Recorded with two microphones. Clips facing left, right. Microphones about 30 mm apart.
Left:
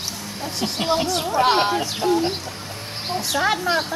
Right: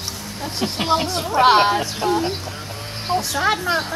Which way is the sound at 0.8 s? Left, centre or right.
Centre.